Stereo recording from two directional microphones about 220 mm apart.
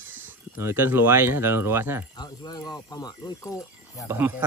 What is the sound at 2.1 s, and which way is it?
Speech, 20° left (ahead or behind).